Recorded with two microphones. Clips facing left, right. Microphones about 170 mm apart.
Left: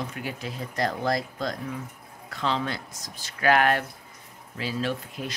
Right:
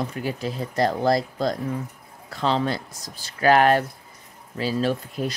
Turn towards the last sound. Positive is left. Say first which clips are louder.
# right 6 dB
turn(degrees=-40)  # may be behind; listen again after turning